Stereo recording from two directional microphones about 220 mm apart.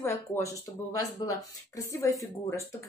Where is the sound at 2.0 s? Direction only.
15° left (ahead or behind).